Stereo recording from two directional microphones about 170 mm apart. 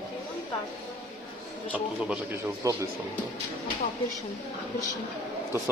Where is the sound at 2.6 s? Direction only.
20° right (ahead or behind).